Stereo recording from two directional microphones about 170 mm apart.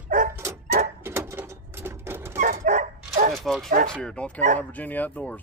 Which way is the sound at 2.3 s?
45° right (ahead or behind).